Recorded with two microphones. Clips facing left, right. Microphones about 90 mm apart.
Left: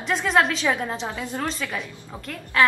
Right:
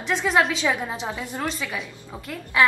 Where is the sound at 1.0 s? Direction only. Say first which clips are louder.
Left 1 dB; 15° right (ahead or behind).